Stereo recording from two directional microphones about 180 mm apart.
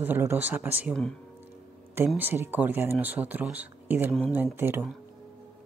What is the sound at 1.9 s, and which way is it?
Speech, 10° right (ahead or behind).